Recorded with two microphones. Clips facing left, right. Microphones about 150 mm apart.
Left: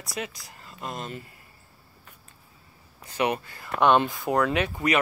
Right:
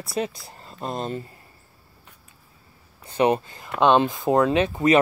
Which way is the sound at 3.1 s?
30° right (ahead or behind).